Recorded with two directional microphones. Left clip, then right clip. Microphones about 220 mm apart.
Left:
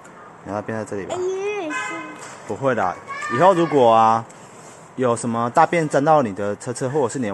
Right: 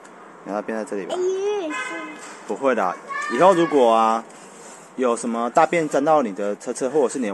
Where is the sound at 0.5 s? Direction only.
Centre (ahead or behind).